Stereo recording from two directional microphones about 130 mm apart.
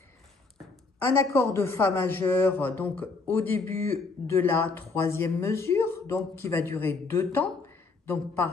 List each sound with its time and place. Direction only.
0.9 s a man's voice: 20° left (ahead or behind)